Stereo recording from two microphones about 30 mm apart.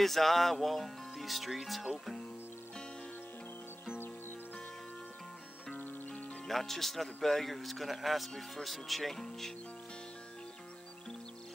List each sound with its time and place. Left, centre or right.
0.0 s speech: centre
6.0 s music: left
6.4 s speech: centre
9.1 s speech: centre